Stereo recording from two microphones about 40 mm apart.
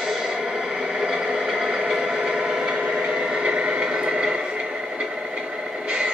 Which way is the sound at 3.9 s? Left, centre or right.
Right.